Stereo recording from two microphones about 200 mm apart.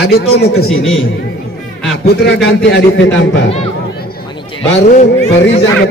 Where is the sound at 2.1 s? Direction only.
55° left (ahead or behind).